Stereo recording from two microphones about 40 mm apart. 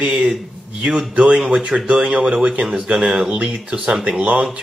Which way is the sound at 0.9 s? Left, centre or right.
Right.